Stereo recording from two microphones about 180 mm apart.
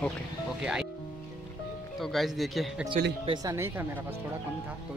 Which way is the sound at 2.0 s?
Centre (ahead or behind).